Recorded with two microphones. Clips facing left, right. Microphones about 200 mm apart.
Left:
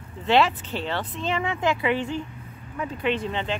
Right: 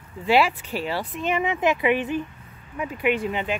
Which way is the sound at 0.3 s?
10° right (ahead or behind).